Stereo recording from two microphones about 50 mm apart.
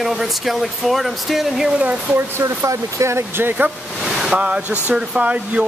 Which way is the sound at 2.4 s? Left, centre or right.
Right.